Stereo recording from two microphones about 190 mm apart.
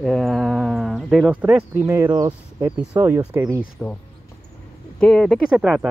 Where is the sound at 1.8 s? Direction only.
20° right (ahead or behind).